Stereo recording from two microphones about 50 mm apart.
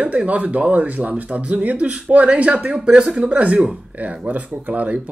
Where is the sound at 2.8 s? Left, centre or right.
Centre.